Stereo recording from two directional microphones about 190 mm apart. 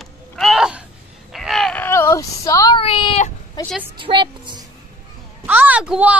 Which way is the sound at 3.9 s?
25° right (ahead or behind).